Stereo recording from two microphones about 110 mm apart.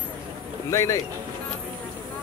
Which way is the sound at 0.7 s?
30° left (ahead or behind).